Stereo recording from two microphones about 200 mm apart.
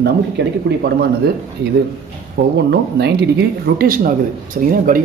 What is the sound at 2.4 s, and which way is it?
Speech, 50° right (ahead or behind).